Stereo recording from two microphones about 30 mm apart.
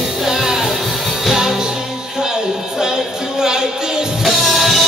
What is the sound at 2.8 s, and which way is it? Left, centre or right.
Music, centre.